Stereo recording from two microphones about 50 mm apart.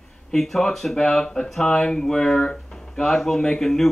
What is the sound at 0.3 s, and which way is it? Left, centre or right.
Speech, centre.